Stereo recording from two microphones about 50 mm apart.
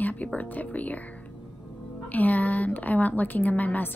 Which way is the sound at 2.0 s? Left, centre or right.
Left.